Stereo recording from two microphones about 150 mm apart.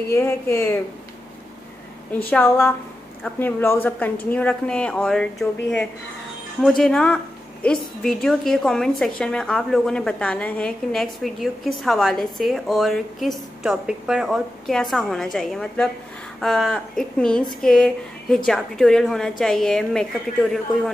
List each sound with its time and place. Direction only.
0.1 s speech: 15° left (ahead or behind)
2.3 s a woman's voice: 15° left (ahead or behind)